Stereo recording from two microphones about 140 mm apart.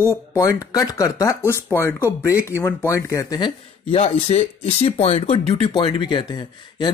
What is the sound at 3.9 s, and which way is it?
Speech, 45° left (ahead or behind).